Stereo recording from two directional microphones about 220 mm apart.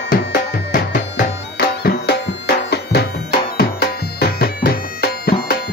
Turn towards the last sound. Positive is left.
turn(degrees=45)  # may be behind; listen again after turning